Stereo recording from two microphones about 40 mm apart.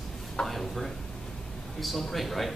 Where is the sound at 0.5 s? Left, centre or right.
Centre.